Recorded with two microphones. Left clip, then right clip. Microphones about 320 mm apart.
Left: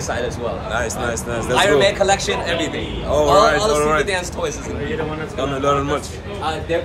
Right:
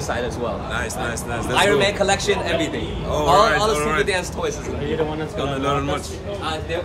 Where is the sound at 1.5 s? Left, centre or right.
Centre.